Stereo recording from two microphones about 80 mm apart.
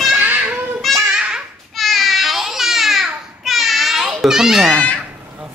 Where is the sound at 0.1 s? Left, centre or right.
Right.